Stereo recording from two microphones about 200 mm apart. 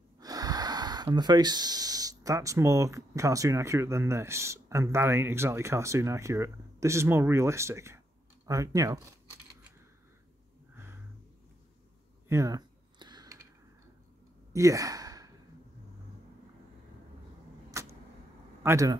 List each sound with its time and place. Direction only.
0.2 s speech: 20° right (ahead or behind)
12.3 s a sound: 15° right (ahead or behind)
14.5 s sigh: 15° right (ahead or behind)
17.8 s vehicle: 15° right (ahead or behind)
18.6 s speech: 15° right (ahead or behind)